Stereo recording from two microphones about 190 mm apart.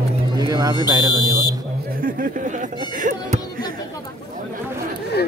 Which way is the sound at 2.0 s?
45° right (ahead or behind).